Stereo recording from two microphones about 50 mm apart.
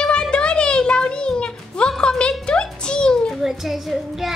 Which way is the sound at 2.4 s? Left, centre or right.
Centre.